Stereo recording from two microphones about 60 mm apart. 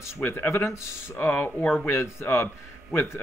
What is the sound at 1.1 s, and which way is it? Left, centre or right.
Speech, left.